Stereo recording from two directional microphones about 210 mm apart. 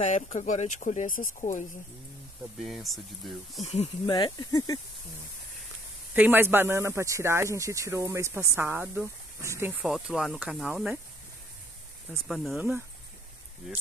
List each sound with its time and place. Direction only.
0.0 s speech: 35° left (ahead or behind)
2.6 s speech: centre (ahead or behind)
3.6 s speech: 30° left (ahead or behind)
4.0 s speech: 20° left (ahead or behind)
6.1 s speech: 10° right (ahead or behind)
12.1 s speech: centre (ahead or behind)